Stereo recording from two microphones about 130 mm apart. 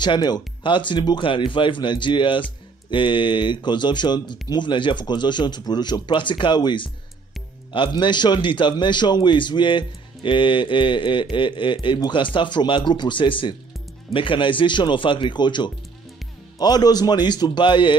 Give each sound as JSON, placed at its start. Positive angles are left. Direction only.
{"t": 0.0, "sound": "speech", "side_deg": 35}